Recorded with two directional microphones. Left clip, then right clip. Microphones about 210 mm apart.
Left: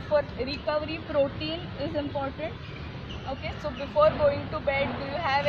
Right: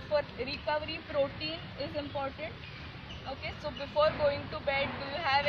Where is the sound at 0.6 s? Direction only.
20° right (ahead or behind).